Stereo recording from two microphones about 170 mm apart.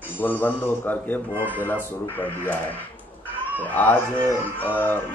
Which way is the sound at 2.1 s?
10° left (ahead or behind).